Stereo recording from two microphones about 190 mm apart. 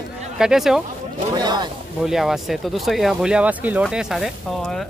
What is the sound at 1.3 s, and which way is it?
Speech, 20° right (ahead or behind).